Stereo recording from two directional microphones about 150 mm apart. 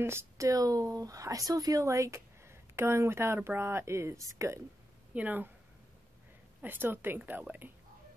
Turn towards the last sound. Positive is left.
turn(degrees=-15)  # may be behind; listen again after turning